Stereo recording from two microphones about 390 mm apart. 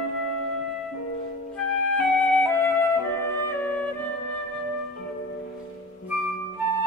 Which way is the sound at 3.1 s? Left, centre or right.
Centre.